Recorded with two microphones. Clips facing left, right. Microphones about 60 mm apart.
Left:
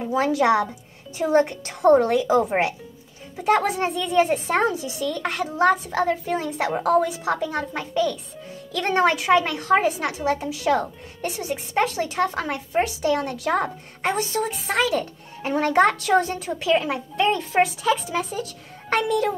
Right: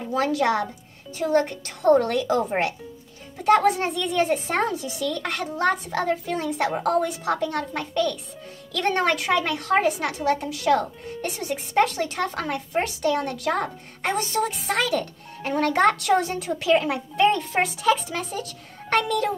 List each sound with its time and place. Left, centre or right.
0.1 s a woman's voice: centre